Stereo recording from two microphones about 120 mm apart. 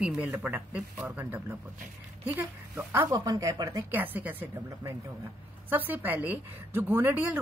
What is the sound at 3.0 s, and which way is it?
Speech, 30° right (ahead or behind).